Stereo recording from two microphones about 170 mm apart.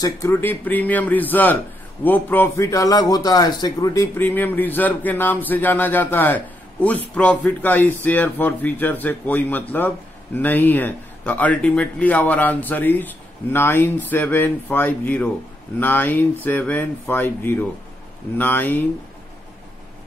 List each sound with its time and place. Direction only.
0.0 s a man's voice: 15° left (ahead or behind)